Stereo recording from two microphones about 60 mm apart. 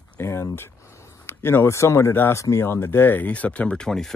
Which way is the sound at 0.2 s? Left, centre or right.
Left.